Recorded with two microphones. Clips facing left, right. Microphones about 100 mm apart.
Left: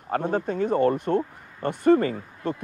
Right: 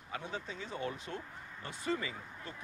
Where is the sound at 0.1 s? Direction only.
55° left (ahead or behind).